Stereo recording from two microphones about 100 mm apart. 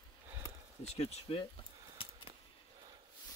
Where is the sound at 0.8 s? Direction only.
90° left.